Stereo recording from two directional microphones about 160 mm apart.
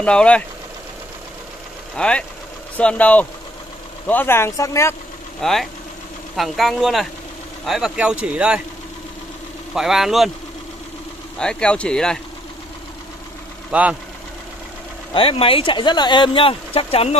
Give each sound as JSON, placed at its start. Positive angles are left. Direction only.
{"t": 0.0, "sound": "speech", "side_deg": 5}
{"t": 2.0, "sound": "speech", "side_deg": 5}
{"t": 5.4, "sound": "speech", "side_deg": 0}
{"t": 9.8, "sound": "speech", "side_deg": 0}
{"t": 11.3, "sound": "speech", "side_deg": 5}
{"t": 13.7, "sound": "speech", "side_deg": -10}
{"t": 15.1, "sound": "speech", "side_deg": 35}